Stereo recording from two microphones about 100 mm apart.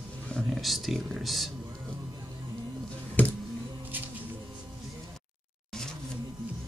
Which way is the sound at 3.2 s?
15° left (ahead or behind).